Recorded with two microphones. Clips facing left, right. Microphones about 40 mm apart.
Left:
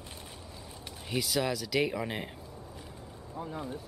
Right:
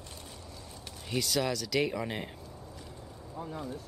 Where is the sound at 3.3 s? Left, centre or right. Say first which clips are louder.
Left 1 dB; centre.